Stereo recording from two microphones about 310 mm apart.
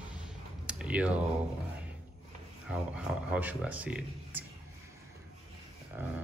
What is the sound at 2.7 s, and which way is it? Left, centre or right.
Speech, centre.